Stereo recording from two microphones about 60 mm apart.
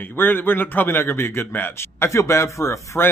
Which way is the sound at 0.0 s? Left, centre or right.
Left.